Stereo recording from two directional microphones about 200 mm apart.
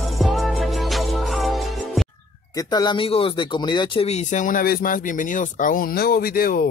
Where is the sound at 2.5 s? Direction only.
20° left (ahead or behind); by 6.7 s 45° left (ahead or behind).